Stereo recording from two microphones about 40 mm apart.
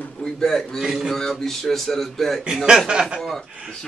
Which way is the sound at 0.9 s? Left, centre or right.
Centre.